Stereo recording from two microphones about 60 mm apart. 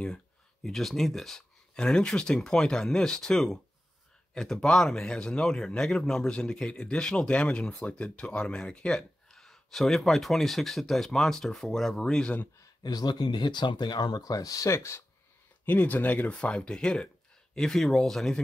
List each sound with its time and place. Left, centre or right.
0.7 s speech: centre
12.8 s speech: left
15.6 s speech: left; by 18.4 s centre